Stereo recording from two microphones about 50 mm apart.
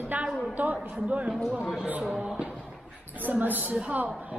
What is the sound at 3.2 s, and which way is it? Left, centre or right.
Speech, right.